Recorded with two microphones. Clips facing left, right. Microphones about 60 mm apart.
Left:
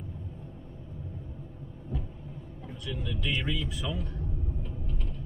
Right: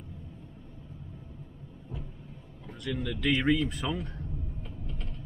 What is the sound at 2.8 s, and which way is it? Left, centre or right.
Speech, right.